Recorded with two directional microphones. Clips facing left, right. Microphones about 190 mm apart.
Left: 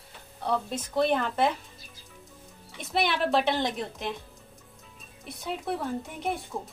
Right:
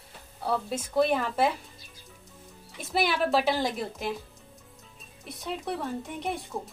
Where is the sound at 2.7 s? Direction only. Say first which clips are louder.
Even; 5° right (ahead or behind).